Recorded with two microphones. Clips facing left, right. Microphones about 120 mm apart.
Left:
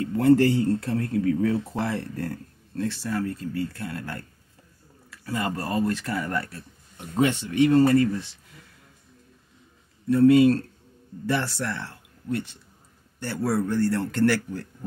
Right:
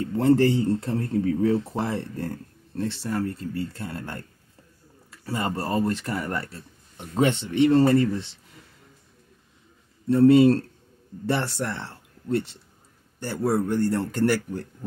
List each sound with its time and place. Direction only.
0.0 s speech: 25° right (ahead or behind)
10.0 s speech: 30° right (ahead or behind)
13.2 s speech: 20° right (ahead or behind)